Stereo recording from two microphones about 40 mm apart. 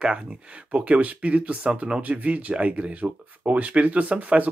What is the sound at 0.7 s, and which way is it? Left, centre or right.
Speech, right.